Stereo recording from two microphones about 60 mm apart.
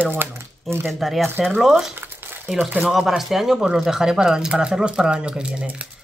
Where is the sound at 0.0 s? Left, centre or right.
Right.